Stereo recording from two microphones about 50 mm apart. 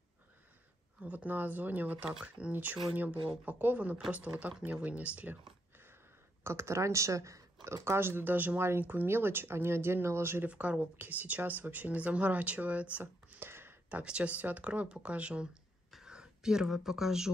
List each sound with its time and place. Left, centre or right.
1.0 s speech: right
2.2 s speech: right
2.5 s speech: right
6.4 s speech: right
7.6 s speech: right
8.5 s speech: right
10.5 s speech: right
13.0 s a sound: right
14.0 s speech: right